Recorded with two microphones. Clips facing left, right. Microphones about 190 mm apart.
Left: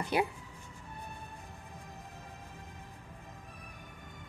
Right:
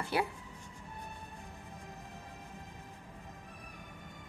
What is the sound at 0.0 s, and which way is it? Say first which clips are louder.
Speech: left 2 dB; 20° left (ahead or behind).